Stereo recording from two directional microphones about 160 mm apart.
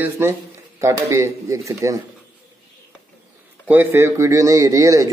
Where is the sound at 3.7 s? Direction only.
10° right (ahead or behind).